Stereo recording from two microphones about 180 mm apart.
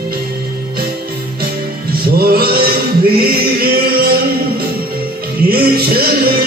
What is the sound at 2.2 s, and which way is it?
Music, 55° right (ahead or behind).